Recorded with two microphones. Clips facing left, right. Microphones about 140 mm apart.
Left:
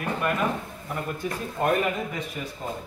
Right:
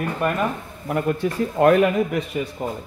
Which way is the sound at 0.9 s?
70° right (ahead or behind).